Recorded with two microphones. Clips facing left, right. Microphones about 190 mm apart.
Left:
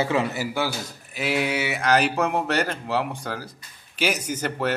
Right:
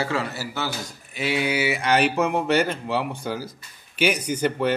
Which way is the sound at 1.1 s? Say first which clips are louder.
Even; centre (ahead or behind).